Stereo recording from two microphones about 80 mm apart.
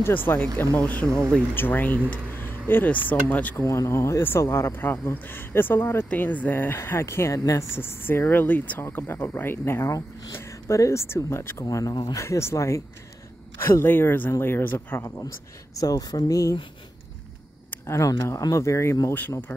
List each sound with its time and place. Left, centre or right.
0.0 s speech: left
3.6 s speech: left
4.2 s speech: left
11.6 s speech: left
12.2 s speech: left
15.0 s speech: left
15.7 s speech: left
17.6 s a sound: left
18.0 s speech: left